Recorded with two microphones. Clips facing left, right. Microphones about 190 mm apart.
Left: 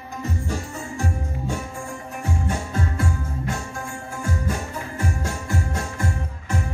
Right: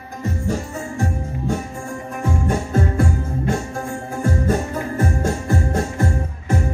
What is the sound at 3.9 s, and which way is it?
Music, 40° right (ahead or behind).